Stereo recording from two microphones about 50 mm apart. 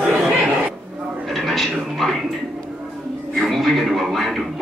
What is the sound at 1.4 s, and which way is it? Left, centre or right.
Speech, centre.